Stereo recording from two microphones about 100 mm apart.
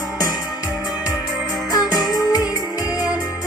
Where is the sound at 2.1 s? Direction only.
40° left (ahead or behind).